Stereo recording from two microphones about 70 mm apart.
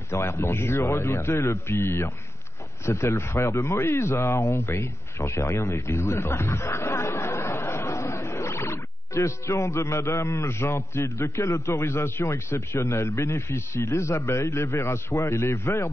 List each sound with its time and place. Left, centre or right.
0.1 s speech: left
14.9 s speech: left